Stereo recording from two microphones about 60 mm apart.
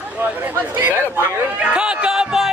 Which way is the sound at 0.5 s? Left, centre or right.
Right.